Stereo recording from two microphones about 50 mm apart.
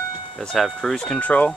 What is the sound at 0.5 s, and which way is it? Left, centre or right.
Speech, centre.